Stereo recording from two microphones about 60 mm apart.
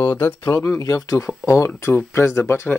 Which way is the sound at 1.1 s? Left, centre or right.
Left.